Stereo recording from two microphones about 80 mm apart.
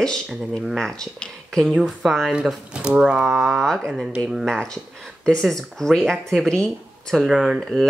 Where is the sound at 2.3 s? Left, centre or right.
Centre.